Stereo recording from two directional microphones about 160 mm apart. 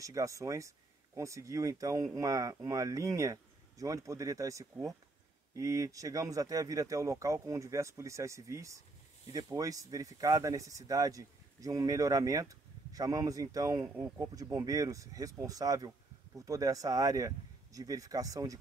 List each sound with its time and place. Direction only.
0.0 s speech: 20° right (ahead or behind)